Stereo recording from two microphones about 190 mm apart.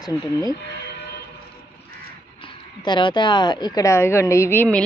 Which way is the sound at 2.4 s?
25° left (ahead or behind).